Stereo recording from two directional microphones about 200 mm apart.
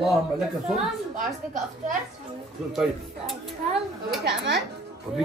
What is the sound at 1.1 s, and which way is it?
Speech, 40° right (ahead or behind).